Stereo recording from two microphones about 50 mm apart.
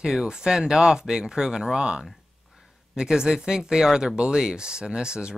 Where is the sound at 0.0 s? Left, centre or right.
Centre.